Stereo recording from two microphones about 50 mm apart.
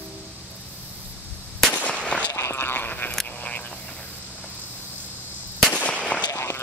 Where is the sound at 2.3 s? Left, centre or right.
Left.